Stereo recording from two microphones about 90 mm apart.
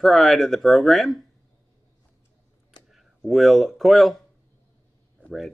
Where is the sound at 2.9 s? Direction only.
Centre (ahead or behind).